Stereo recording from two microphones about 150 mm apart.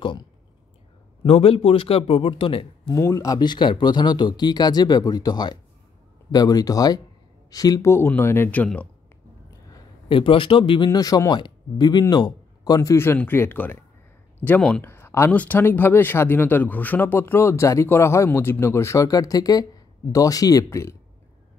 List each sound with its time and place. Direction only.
0.0 s clicking: 35° left (ahead or behind)
1.2 s a man's voice: 40° left (ahead or behind)
2.9 s speech: 20° left (ahead or behind)
10.0 s speech: 35° left (ahead or behind)